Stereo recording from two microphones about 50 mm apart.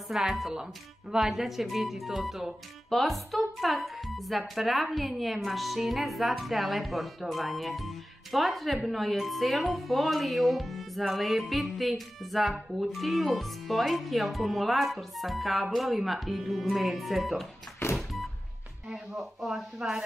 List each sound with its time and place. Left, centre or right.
0.1 s speech: centre
17.9 s a sound: centre
18.9 s speech: centre
19.8 s speech: centre